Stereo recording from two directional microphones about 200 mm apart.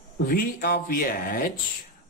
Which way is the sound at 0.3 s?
45° left (ahead or behind).